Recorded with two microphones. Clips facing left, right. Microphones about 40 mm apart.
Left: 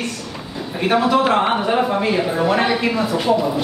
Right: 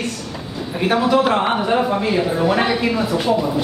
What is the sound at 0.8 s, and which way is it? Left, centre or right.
A man's voice, centre.